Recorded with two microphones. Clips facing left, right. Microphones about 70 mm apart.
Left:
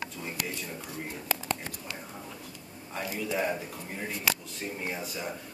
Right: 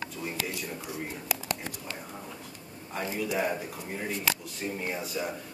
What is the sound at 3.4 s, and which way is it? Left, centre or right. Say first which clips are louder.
A man's voice: right 1 dB; centre.